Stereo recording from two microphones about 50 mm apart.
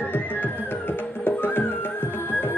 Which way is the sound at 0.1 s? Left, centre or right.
Left.